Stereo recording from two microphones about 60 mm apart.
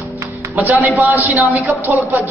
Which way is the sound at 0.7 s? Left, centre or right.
Right.